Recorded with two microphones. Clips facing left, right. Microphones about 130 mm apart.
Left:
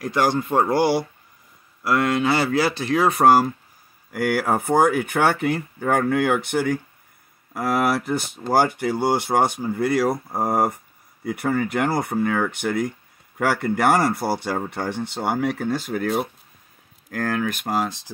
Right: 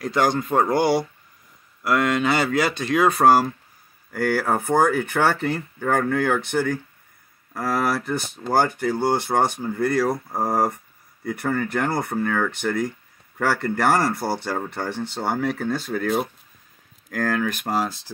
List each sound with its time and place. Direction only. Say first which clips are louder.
0.0 s speech: even; 5° left (ahead or behind)
4.1 s speech: left 1 dB; 15° left (ahead or behind)
17.8 s speech: even; 20° left (ahead or behind)